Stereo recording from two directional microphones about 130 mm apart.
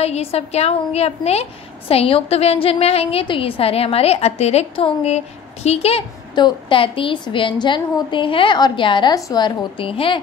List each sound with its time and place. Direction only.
0.0 s a woman's voice: 50° left (ahead or behind)
6.3 s a woman's voice: 40° left (ahead or behind)